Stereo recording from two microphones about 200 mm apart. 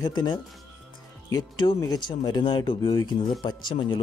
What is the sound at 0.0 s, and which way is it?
Speech, 20° left (ahead or behind).